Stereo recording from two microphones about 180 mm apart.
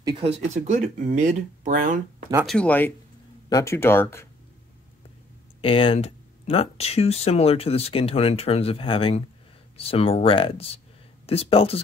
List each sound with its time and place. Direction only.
0.0 s speech: 30° right (ahead or behind); by 2.2 s 50° right (ahead or behind)
2.4 s speech: 5° left (ahead or behind)
5.6 s speech: 30° left (ahead or behind)